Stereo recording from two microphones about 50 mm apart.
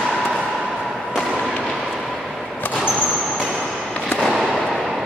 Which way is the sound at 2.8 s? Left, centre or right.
Right.